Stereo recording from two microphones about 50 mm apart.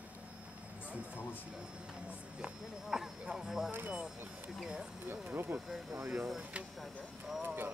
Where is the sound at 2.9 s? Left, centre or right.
Centre.